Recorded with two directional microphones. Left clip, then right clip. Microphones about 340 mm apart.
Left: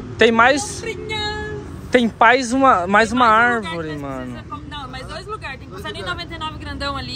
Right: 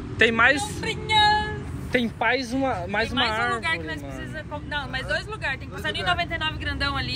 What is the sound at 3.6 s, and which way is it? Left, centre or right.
Speech, centre.